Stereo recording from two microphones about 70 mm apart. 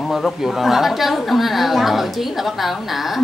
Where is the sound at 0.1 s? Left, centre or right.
Centre.